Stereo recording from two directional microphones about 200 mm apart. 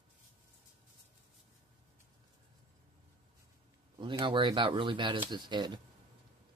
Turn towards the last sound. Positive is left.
turn(degrees=-20)  # may be behind; listen again after turning